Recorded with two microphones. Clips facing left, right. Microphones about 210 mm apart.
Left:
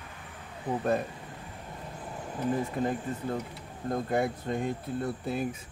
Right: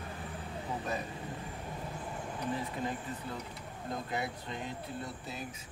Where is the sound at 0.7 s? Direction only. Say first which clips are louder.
Left 8 dB; 50° left (ahead or behind).